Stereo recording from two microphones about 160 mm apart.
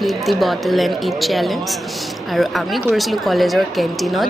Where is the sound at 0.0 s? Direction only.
Centre (ahead or behind).